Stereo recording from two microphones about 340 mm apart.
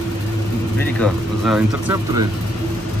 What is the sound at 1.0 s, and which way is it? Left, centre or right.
Speech, centre.